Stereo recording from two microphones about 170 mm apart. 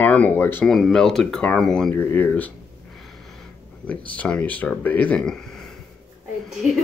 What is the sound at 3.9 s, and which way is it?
Speech, 10° left (ahead or behind).